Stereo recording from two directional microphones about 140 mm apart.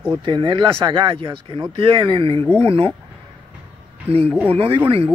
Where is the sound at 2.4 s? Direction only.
10° left (ahead or behind).